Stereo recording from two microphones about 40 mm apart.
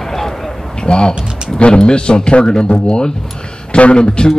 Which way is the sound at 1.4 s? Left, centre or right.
Left.